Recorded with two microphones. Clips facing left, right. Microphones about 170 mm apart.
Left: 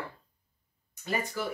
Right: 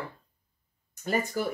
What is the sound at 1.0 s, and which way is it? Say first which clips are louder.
Speech: right 4 dB; 45° right (ahead or behind).